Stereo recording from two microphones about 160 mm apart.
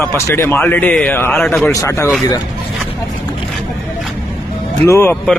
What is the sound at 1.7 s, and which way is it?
Speech, 20° left (ahead or behind).